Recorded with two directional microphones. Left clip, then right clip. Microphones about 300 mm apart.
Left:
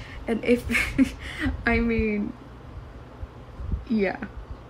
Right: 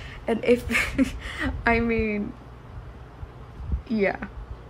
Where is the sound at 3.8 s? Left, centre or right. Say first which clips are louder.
Right 1 dB; centre.